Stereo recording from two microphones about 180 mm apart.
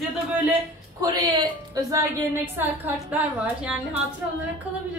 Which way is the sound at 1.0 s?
20° right (ahead or behind).